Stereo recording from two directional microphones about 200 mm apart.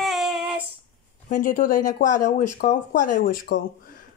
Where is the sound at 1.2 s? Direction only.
40° left (ahead or behind).